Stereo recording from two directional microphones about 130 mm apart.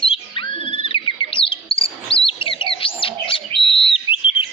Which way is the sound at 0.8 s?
40° left (ahead or behind).